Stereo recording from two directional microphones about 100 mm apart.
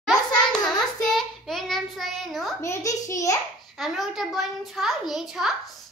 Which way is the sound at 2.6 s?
30° left (ahead or behind).